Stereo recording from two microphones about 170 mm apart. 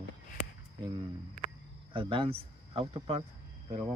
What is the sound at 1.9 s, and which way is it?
Speech, 30° right (ahead or behind).